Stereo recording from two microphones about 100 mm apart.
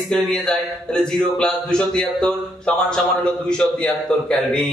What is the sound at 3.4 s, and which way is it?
A man's voice, 10° left (ahead or behind).